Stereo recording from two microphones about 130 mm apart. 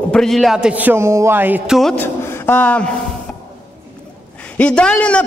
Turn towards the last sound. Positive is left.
turn(degrees=10)  # may be behind; listen again after turning